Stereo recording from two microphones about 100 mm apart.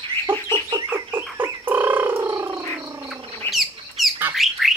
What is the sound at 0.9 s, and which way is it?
Frog, 20° right (ahead or behind).